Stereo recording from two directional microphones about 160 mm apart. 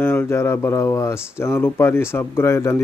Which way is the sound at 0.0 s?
15° left (ahead or behind).